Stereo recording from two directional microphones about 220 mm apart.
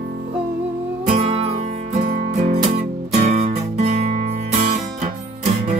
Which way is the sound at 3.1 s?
30° right (ahead or behind).